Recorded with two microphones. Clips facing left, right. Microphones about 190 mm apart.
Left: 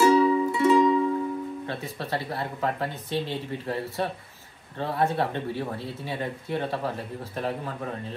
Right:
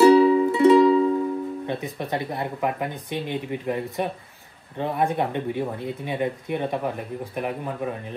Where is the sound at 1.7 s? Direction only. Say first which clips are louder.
Right 4 dB; 15° right (ahead or behind).